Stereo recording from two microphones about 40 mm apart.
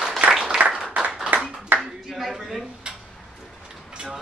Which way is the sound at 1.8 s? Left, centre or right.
Centre.